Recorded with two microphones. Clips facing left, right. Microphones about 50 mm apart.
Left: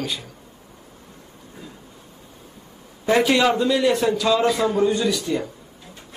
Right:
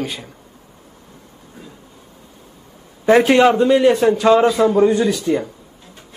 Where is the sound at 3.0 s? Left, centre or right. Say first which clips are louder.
Right 6 dB; right.